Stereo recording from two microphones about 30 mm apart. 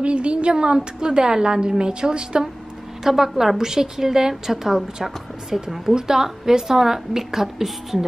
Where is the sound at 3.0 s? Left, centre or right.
Centre.